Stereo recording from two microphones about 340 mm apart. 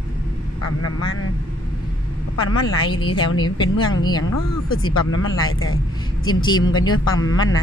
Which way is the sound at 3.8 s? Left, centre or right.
Left.